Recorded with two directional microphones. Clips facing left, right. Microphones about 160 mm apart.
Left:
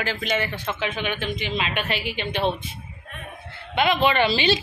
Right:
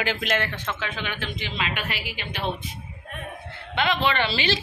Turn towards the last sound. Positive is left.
turn(degrees=20)  # may be behind; listen again after turning